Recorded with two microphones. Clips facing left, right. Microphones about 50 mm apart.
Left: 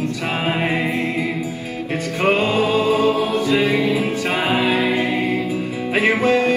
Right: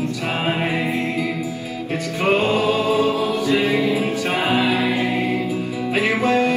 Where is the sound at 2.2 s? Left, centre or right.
Left.